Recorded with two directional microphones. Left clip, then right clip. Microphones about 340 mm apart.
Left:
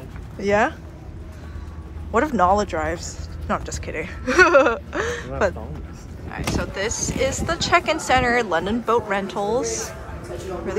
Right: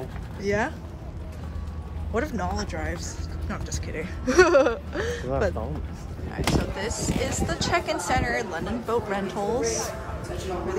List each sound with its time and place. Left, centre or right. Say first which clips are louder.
0.4 s speech: left 7 dB; centre
2.1 s speech: left 11 dB; centre
6.3 s speech: left 1 dB; centre